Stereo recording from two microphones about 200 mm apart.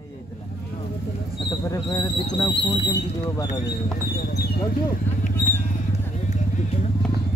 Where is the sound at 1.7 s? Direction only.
15° left (ahead or behind).